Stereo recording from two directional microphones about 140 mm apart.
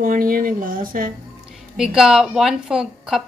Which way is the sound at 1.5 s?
5° right (ahead or behind).